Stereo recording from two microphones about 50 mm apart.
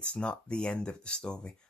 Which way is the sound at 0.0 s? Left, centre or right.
Left.